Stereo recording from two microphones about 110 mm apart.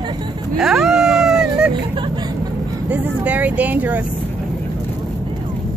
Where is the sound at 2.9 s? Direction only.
15° right (ahead or behind).